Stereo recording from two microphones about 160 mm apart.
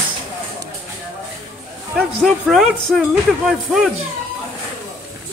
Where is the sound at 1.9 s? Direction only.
Centre (ahead or behind).